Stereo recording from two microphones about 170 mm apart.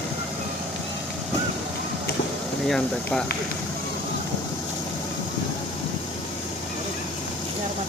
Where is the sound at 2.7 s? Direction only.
5° left (ahead or behind).